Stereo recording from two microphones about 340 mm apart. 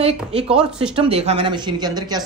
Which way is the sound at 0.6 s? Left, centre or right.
Centre.